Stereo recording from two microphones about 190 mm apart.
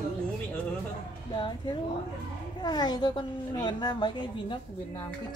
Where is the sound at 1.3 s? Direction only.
25° left (ahead or behind).